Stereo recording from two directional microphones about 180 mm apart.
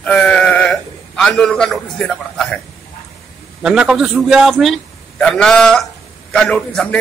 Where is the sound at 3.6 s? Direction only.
5° right (ahead or behind).